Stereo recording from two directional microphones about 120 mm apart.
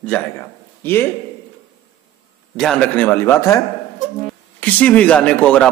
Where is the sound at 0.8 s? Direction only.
20° left (ahead or behind).